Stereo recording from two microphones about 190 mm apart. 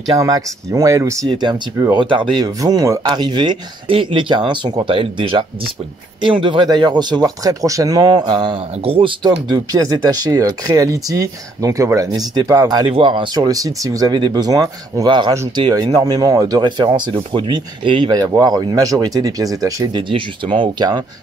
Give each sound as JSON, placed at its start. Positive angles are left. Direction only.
{"t": 0.0, "sound": "speech", "side_deg": -20}
{"t": 6.4, "sound": "speech", "side_deg": -25}